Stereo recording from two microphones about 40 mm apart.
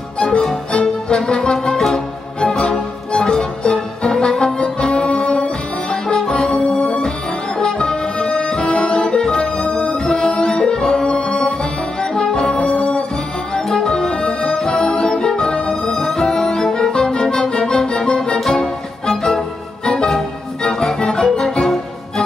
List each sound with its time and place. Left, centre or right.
0.7 s music: left
12.7 s music: left
21.0 s organ: centre